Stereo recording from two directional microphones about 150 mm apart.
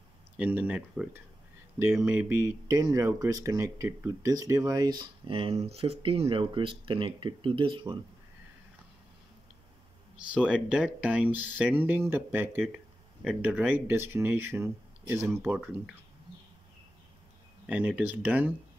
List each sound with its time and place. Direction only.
0.4 s speech: 10° right (ahead or behind); by 8.0 s 35° right (ahead or behind)
10.1 s speech: 5° right (ahead or behind)
17.6 s speech: 10° right (ahead or behind)